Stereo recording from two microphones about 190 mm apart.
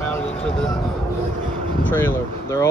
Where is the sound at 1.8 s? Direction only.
10° left (ahead or behind).